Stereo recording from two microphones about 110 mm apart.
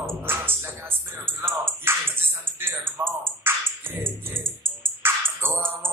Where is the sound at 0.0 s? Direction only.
20° right (ahead or behind).